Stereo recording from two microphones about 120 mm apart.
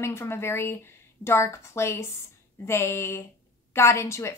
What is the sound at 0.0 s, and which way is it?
A woman's voice, 20° left (ahead or behind).